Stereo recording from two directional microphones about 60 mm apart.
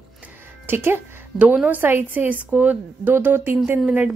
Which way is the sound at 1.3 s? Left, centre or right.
Right.